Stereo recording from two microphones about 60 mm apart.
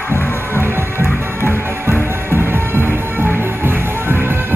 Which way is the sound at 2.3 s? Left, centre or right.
Right.